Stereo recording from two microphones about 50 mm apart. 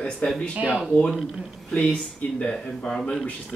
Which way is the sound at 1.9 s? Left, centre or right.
Left.